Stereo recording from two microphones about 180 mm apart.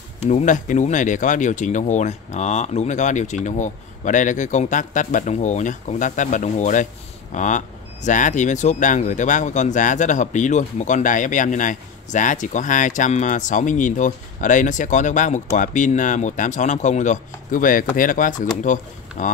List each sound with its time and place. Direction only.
0.2 s speech: 40° left (ahead or behind)